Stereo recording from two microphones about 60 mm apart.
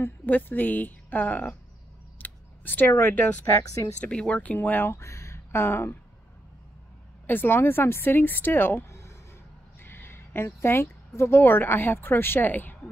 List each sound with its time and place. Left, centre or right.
0.0 s speech: left
2.1 s a sound: left
3.0 s a woman's voice: left
3.5 s a woman's voice: left
4.0 s speech: centre
4.6 s a woman's voice: left
4.9 s speech: left
7.2 s a woman's voice: left
8.8 s a sound: left
9.8 s speech: left